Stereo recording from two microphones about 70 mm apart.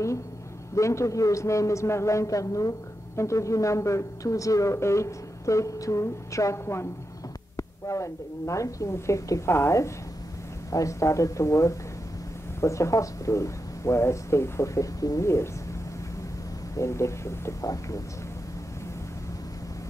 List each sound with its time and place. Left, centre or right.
0.7 s speech: left
15.2 s speech: left
16.7 s speech: left